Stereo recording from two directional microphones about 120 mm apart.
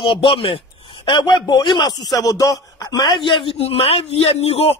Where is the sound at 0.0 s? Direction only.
45° left (ahead or behind).